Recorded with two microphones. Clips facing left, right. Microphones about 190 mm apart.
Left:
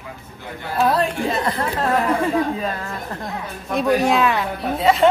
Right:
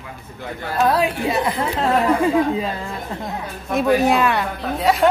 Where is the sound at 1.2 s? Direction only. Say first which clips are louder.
Right 1 dB; 15° right (ahead or behind).